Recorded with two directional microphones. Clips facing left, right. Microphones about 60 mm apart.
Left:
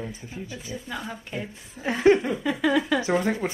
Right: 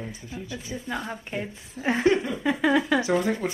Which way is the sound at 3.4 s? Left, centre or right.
Left.